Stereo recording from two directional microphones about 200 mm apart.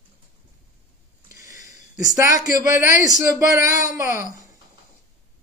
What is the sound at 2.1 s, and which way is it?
A man's voice, 15° right (ahead or behind).